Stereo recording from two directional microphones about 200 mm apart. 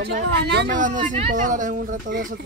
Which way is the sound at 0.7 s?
40° right (ahead or behind).